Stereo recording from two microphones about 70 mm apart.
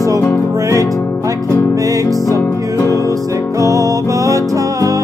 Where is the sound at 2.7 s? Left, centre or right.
Left.